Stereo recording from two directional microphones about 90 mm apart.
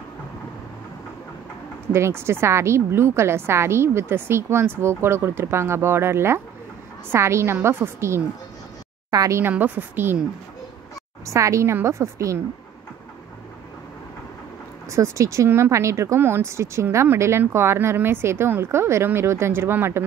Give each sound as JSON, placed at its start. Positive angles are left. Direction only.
{"t": 1.9, "sound": "a woman's voice", "side_deg": -30}
{"t": 9.1, "sound": "speech", "side_deg": -40}
{"t": 9.4, "sound": "a woman's voice", "side_deg": -20}
{"t": 11.2, "sound": "speech", "side_deg": -35}
{"t": 14.9, "sound": "a woman's voice", "side_deg": -35}